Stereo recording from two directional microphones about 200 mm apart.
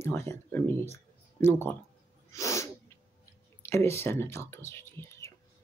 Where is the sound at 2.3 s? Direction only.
15° left (ahead or behind).